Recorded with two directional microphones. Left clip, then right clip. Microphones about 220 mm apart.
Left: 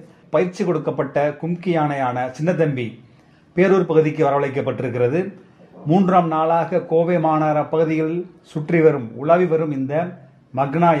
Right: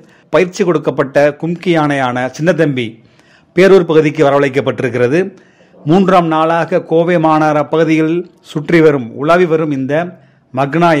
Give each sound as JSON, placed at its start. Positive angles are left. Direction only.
{"t": 0.3, "sound": "a man's voice", "side_deg": -35}